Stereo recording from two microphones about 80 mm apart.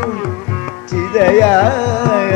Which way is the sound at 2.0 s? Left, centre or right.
Left.